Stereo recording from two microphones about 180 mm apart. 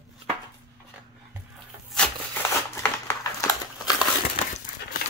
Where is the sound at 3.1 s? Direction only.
20° left (ahead or behind).